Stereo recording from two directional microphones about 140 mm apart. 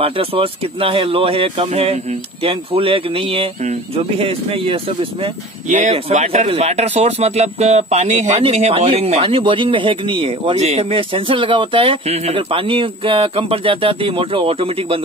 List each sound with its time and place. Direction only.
0.0 s speech: 40° right (ahead or behind)
5.7 s speech: 55° right (ahead or behind)